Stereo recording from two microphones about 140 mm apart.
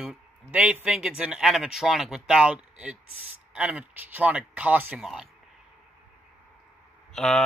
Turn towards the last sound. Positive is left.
turn(degrees=5)  # may be behind; listen again after turning